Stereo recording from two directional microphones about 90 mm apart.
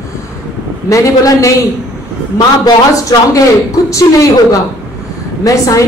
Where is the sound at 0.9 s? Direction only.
35° left (ahead or behind).